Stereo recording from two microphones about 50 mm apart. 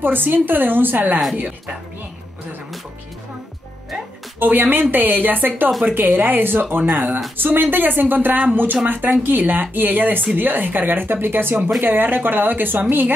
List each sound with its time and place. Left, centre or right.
0.0 s a woman's voice: right
4.4 s speech: right